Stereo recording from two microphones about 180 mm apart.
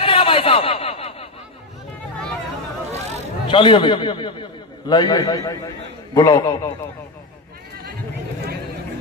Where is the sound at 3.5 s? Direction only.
30° left (ahead or behind).